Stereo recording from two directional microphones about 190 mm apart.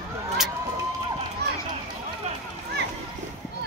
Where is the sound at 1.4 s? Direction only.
60° right (ahead or behind).